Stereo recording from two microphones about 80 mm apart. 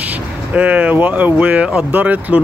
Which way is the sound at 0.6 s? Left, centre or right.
Centre.